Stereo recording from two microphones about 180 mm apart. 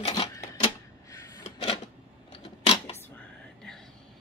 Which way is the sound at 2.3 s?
35° left (ahead or behind).